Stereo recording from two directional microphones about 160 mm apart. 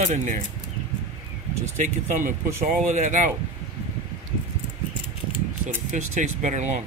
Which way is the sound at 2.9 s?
50° right (ahead or behind).